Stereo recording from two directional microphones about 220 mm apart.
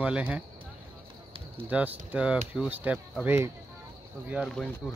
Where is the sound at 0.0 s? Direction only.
5° right (ahead or behind).